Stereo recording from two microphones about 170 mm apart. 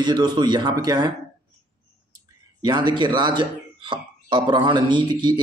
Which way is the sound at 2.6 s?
25° right (ahead or behind).